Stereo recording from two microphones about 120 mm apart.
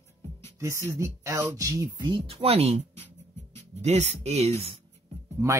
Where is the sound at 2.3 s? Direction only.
55° right (ahead or behind).